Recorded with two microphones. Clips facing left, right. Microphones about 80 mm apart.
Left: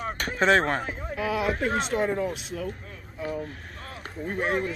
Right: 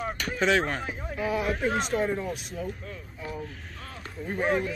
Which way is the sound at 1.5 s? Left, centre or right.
Left.